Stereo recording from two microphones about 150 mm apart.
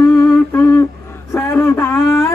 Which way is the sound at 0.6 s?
15° left (ahead or behind).